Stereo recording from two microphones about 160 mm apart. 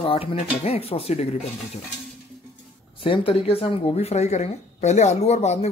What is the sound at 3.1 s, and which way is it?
Speech, 35° left (ahead or behind).